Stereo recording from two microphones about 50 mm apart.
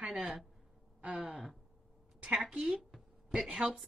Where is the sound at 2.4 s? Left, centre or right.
Centre.